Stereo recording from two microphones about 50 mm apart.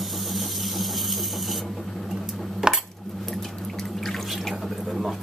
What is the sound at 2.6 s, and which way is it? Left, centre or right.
Dishes, centre.